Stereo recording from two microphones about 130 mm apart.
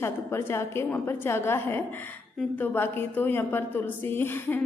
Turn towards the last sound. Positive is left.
turn(degrees=15)  # may be behind; listen again after turning